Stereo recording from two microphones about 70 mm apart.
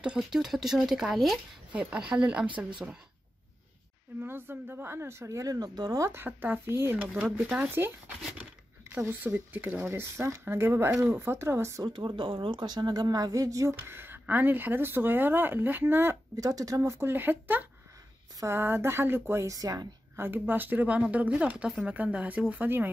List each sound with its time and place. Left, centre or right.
0.0 s speech: centre
1.7 s speech: right
4.2 s speech: right
5.5 s speech: right
5.9 s speech: right
6.2 s speech: right
7.4 s speech: right
8.9 s speech: right
11.8 s speech: right
16.3 s speech: right
17.0 s speech: right
19.4 s speech: right
20.2 s speech: right; by 21.9 s centre
21.9 s speech: right